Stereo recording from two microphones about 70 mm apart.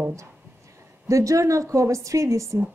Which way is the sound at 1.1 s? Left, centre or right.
Right.